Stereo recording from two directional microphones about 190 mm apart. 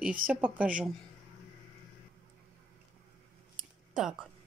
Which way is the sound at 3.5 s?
5° right (ahead or behind).